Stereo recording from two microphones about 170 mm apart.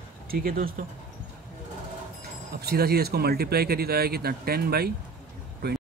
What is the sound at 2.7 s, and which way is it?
Speech, 65° right (ahead or behind).